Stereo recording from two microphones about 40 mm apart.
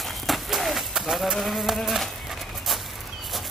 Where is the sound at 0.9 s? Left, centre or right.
Centre.